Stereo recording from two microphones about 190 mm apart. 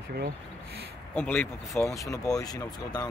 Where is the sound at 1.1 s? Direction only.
10° left (ahead or behind).